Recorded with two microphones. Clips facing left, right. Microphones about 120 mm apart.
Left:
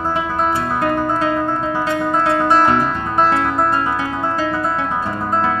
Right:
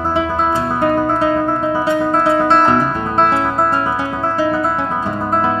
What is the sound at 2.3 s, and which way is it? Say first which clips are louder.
Music: right 1 dB; 15° right (ahead or behind).